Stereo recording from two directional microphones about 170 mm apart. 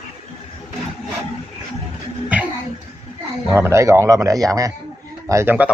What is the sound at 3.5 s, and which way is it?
A man's voice, 15° right (ahead or behind).